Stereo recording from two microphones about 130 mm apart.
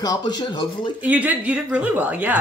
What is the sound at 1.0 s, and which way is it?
Speech, 10° right (ahead or behind).